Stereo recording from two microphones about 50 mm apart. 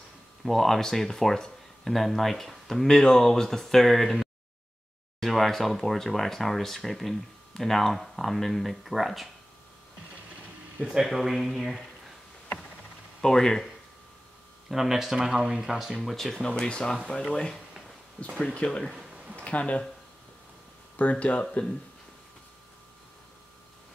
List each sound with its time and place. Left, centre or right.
0.4 s speech: centre
5.2 s speech: centre
11.0 s speech: centre
13.2 s speech: centre
14.7 s speech: centre
15.1 s speech: centre
16.0 s speech: centre
16.4 s speech: centre
20.9 s speech: left